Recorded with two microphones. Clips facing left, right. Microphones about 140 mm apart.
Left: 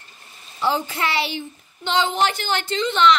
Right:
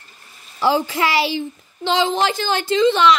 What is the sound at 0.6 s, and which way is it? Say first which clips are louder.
A woman's voice: right 5 dB; 90° right.